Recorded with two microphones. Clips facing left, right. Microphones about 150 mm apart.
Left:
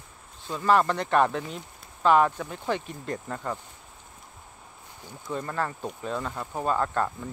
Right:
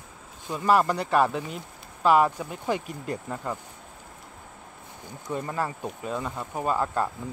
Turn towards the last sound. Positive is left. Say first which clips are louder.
# even
turn(degrees=-10)  # may be behind; listen again after turning